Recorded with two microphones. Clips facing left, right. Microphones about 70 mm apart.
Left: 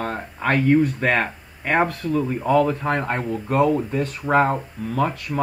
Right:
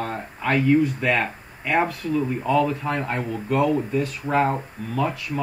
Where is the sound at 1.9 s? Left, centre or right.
Left.